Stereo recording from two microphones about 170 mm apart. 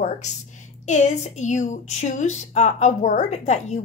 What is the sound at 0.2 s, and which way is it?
Speech, 45° left (ahead or behind).